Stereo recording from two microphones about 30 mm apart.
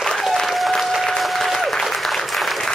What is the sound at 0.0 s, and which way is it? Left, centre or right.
Applause, centre.